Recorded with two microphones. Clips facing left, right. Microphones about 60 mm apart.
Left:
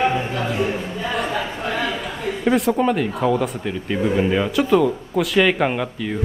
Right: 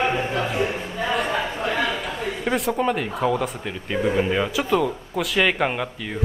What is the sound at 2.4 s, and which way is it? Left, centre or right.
Speech, centre.